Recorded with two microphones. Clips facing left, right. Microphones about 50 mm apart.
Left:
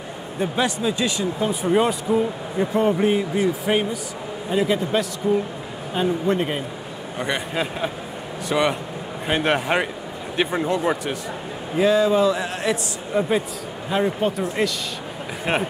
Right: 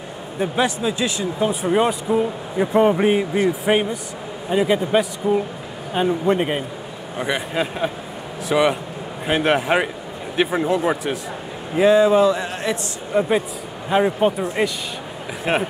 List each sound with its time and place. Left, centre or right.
0.4 s a man's voice: centre
2.7 s a man's voice: right
7.2 s a man's voice: centre
13.8 s a man's voice: centre